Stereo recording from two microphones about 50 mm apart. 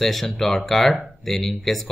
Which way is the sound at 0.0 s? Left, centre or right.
Centre.